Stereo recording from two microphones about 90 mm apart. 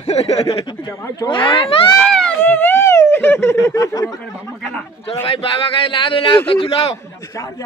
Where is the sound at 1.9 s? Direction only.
10° left (ahead or behind).